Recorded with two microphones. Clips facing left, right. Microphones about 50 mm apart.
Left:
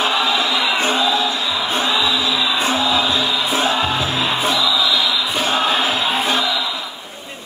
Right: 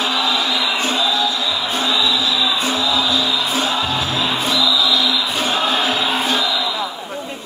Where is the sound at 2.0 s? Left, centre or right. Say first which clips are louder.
Even; left; by 4.8 s centre.